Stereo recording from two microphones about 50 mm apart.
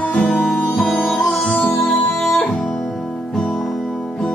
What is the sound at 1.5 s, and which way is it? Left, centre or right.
Music, centre.